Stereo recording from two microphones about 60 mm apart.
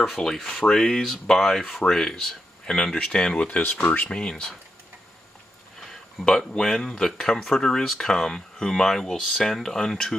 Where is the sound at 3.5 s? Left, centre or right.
Left.